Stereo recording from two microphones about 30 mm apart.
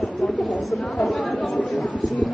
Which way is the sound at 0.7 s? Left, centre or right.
Centre.